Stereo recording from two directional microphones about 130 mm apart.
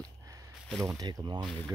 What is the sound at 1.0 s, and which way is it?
Speech, 30° right (ahead or behind).